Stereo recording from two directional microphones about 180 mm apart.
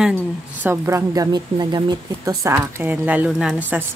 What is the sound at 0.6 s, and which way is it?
Speech, 15° right (ahead or behind).